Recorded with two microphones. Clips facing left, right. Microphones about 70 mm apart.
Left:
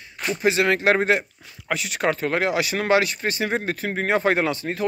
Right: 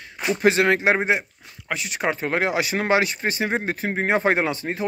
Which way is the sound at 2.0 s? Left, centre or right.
Right.